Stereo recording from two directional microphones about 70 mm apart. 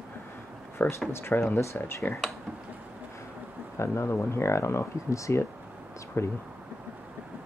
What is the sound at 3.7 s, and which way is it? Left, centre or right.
Speech, left.